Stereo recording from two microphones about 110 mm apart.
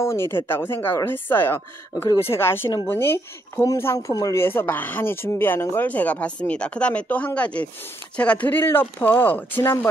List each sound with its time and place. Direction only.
0.0 s speech: 25° left (ahead or behind)